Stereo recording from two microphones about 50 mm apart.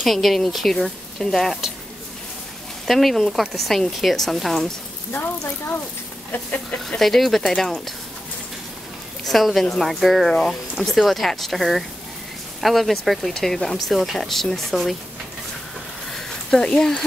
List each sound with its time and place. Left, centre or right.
0.0 s speech: centre
2.9 s speech: centre
6.3 s a sound: left
7.0 s speech: centre
9.3 s speech: centre
16.1 s a sound: centre